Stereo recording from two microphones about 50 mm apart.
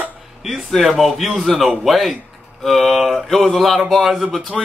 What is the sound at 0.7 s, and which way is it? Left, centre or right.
Speech, centre.